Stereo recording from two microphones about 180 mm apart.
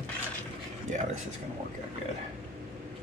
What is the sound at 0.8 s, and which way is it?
Speech, 45° right (ahead or behind).